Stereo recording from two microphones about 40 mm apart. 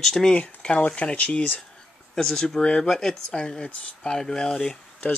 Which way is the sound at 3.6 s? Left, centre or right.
Left.